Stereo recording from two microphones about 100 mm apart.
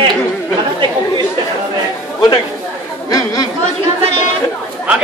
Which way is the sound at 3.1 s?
40° left (ahead or behind).